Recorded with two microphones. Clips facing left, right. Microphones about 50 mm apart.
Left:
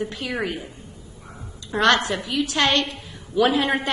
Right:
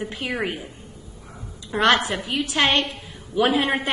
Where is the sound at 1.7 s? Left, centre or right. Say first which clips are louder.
Even; centre.